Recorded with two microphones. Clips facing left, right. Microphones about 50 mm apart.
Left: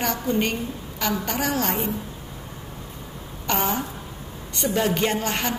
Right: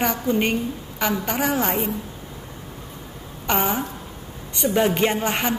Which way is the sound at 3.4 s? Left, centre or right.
Centre.